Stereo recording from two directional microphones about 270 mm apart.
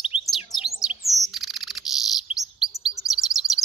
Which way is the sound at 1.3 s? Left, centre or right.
Centre.